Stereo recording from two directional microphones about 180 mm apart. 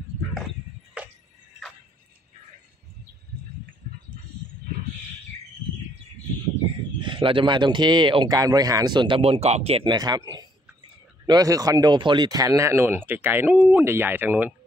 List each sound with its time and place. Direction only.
1.0 s music: 5° right (ahead or behind)
7.0 s a man's voice: 30° right (ahead or behind)
9.9 s a man's voice: 20° right (ahead or behind)